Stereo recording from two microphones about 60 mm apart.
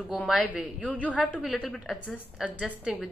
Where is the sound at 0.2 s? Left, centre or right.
Centre.